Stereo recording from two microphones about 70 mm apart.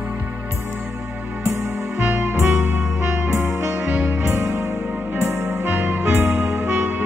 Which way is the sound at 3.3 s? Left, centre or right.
Right.